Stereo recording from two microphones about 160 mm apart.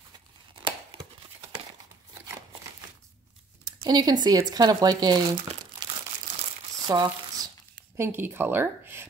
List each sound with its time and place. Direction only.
0.6 s tearing: 30° right (ahead or behind)
3.6 s speech: 25° right (ahead or behind)
6.9 s crumpling: 25° right (ahead or behind)
8.0 s speech: 15° right (ahead or behind)